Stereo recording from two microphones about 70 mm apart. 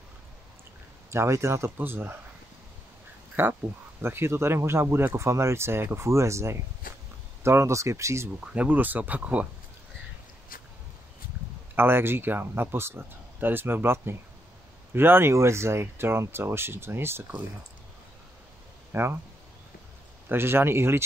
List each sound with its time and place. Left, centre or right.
1.1 s speech: right
1.8 s speech: right
3.4 s speech: right
8.5 s speech: right
11.7 s speech: right
18.9 s speech: right
20.2 s speech: right